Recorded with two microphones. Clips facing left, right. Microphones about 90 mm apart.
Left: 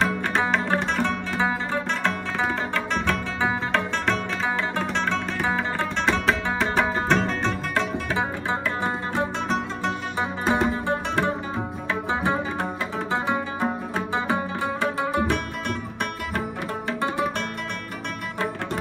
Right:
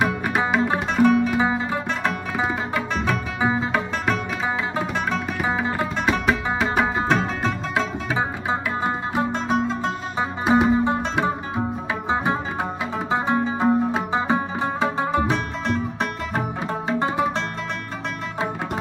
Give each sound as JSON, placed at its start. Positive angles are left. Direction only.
{"t": 0.0, "sound": "music", "side_deg": -10}